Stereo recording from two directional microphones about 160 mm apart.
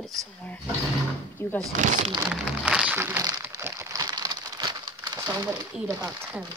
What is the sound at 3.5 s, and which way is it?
Crumpling, 15° right (ahead or behind).